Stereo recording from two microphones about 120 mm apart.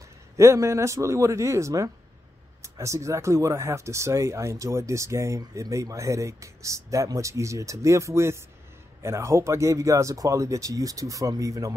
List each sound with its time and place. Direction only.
0.4 s speech: 25° right (ahead or behind)